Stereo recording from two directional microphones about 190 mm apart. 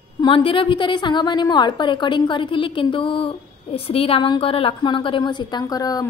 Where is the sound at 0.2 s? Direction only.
25° left (ahead or behind).